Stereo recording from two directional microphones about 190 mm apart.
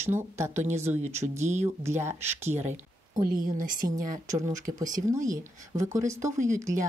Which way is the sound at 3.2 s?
45° right (ahead or behind).